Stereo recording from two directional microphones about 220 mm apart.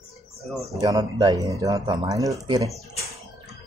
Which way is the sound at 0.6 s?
15° right (ahead or behind).